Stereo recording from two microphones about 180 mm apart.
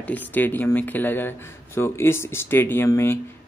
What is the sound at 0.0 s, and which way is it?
Speech, 10° left (ahead or behind).